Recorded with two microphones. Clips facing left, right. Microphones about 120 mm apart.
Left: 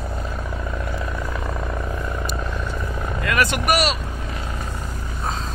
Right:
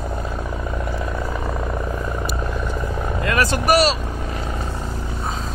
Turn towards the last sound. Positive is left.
turn(degrees=-30)  # may be behind; listen again after turning